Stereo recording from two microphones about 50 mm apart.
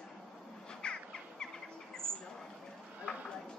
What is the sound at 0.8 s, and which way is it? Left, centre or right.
Music, centre.